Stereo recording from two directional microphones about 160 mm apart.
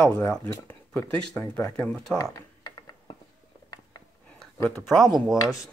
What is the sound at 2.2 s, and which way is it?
Computer keyboard, 25° left (ahead or behind).